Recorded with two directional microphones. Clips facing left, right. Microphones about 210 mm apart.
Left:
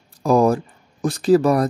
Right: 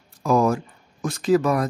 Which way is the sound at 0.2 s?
35° left (ahead or behind).